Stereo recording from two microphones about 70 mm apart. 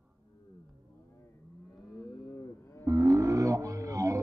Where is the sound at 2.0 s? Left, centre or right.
Left.